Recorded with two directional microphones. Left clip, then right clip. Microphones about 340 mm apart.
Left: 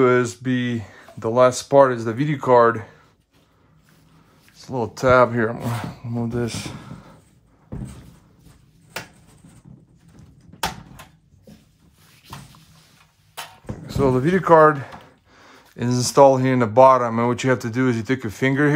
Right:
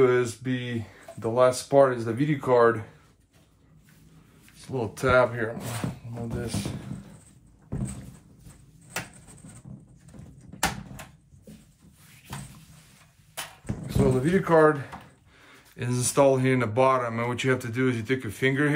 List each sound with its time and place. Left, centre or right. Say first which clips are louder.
0.0 s speech: left 5 dB; left
4.6 s speech: left 6 dB; centre
13.8 s speech: left 5 dB; centre